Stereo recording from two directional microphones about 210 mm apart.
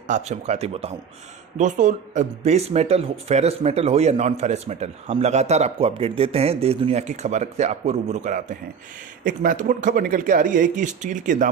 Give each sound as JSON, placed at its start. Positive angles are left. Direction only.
{"t": 0.1, "sound": "speech", "side_deg": -30}